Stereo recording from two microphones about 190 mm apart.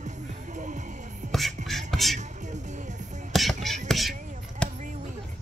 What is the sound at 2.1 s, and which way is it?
Music, 40° right (ahead or behind).